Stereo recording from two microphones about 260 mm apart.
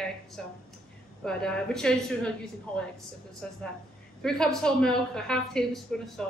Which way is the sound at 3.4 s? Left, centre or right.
Centre.